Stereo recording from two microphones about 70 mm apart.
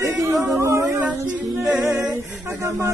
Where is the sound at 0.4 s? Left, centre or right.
Right.